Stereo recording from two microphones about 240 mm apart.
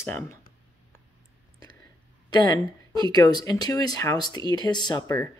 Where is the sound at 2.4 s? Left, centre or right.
Centre.